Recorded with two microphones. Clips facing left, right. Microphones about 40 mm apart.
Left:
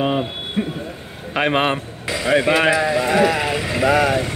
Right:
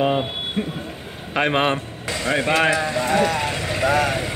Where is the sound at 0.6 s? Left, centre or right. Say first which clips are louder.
Left 4 dB; centre.